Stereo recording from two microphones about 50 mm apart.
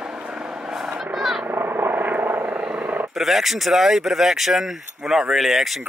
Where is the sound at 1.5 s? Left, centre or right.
Right.